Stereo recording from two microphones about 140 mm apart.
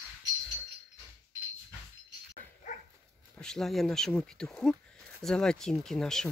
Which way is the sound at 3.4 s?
5° left (ahead or behind).